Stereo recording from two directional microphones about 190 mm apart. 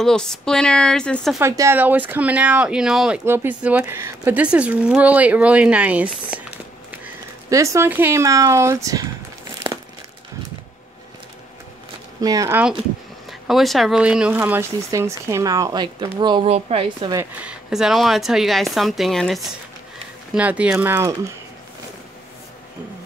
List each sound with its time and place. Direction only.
0.0 s speech: 5° left (ahead or behind)
1.4 s speech: 15° right (ahead or behind)
7.4 s speech: 15° right (ahead or behind)
12.2 s speech: 20° right (ahead or behind)
17.1 s speech: 10° right (ahead or behind)